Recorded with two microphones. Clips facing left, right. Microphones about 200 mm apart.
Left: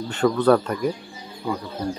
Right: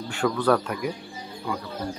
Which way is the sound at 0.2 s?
10° left (ahead or behind).